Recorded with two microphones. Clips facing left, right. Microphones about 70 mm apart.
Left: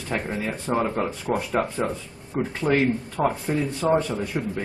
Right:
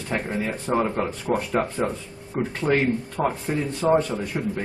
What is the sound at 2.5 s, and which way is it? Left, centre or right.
Speech, centre.